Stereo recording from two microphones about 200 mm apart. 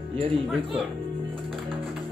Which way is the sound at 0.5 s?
Centre (ahead or behind).